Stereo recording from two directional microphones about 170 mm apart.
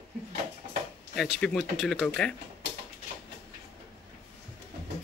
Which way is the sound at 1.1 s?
Centre (ahead or behind).